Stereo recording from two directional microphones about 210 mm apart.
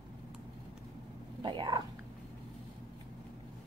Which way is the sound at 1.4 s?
20° right (ahead or behind).